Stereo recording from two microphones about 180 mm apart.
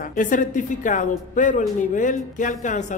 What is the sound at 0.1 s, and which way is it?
Speech, 45° left (ahead or behind).